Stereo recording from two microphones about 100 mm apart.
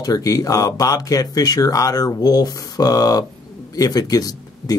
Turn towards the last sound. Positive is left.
turn(degrees=40)  # may be behind; listen again after turning